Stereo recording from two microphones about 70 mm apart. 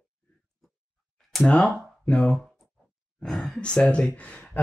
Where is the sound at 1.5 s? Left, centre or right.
Centre.